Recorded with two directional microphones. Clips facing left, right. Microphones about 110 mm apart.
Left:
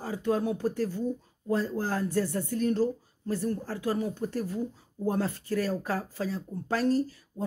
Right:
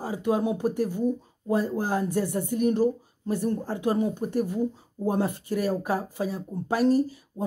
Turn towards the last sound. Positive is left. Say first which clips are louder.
# right 4 dB
turn(degrees=-15)  # may be behind; listen again after turning